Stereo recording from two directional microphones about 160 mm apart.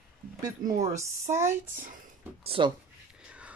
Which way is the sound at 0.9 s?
15° right (ahead or behind).